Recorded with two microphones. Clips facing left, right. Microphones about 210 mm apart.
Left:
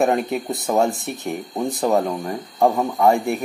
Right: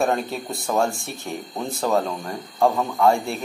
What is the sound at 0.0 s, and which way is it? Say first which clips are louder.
Speech: left 4 dB; 20° left (ahead or behind).